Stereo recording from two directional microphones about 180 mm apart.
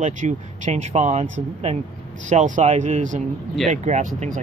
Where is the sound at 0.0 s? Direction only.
40° right (ahead or behind).